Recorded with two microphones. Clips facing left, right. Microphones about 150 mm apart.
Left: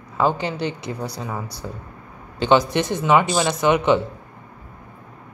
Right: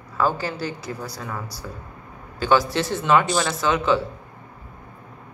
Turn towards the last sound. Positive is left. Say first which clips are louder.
# left 3 dB
turn(degrees=20)  # may be behind; listen again after turning